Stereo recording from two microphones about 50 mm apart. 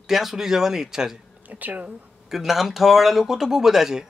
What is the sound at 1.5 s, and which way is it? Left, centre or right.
Speech, right.